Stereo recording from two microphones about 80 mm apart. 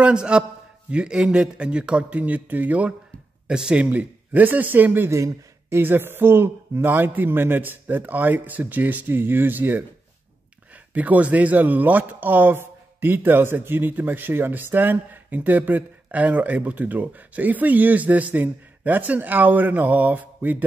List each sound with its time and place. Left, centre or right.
0.0 s a man's voice: centre
3.4 s speech: centre
5.1 s speech: right
10.9 s speech: centre